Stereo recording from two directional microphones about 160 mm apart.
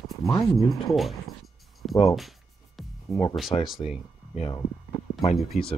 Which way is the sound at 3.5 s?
40° left (ahead or behind).